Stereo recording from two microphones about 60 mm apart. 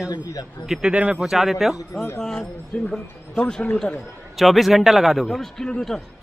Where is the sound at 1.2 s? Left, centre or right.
Centre.